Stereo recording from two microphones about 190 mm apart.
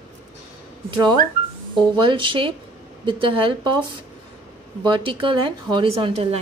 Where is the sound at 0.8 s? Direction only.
20° right (ahead or behind).